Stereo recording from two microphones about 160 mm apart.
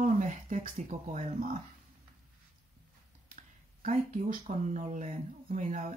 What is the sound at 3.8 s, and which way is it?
Speech, 50° right (ahead or behind).